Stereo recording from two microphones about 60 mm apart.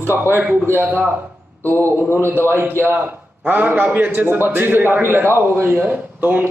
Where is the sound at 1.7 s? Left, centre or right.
Right.